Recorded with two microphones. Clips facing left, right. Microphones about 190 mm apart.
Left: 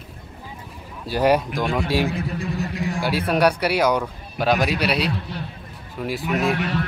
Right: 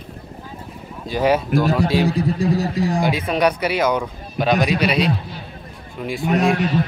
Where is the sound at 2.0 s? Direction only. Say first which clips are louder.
Right 7 dB; 35° right (ahead or behind).